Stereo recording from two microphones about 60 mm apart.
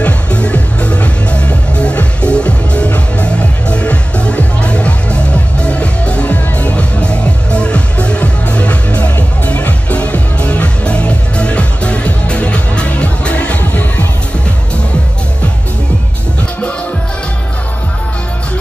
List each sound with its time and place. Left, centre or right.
0.0 s music: centre